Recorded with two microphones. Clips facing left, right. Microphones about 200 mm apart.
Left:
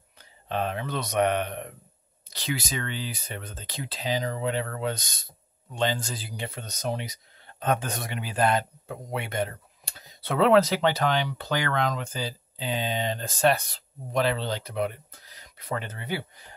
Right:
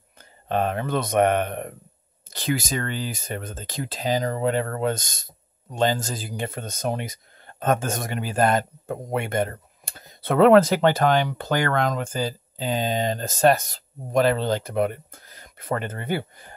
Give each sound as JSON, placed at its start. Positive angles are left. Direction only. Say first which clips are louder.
{"t": 0.2, "sound": "speech", "louder": "right 5 dB", "side_deg": -50}